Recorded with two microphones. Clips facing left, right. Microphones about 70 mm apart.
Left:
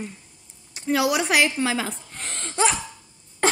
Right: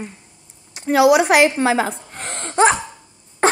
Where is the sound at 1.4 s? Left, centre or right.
Right.